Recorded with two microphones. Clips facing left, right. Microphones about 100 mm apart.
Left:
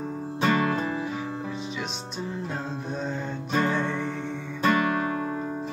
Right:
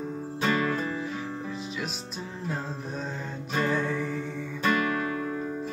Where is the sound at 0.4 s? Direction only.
25° left (ahead or behind).